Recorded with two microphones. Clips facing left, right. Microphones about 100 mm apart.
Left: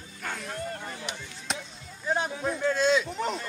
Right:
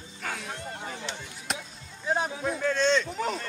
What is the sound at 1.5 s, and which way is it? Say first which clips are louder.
Speech: even; 5° right (ahead or behind).